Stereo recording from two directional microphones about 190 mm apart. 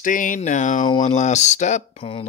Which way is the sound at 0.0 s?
45° left (ahead or behind).